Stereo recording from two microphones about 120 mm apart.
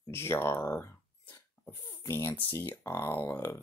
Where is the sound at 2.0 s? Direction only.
20° left (ahead or behind).